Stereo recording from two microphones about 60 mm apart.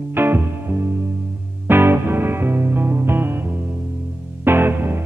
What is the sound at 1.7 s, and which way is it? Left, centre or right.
Music, right.